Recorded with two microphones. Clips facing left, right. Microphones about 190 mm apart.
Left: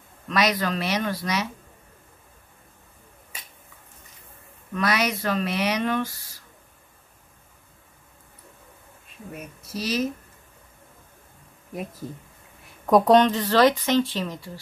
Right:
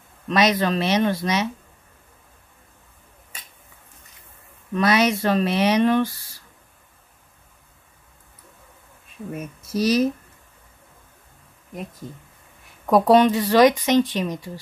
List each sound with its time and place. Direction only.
0.3 s speech: 25° right (ahead or behind)
4.7 s speech: 25° right (ahead or behind)
9.7 s speech: 45° right (ahead or behind)
12.8 s speech: 5° right (ahead or behind)